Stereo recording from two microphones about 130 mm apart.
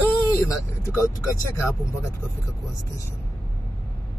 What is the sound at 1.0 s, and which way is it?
Speech, 20° left (ahead or behind).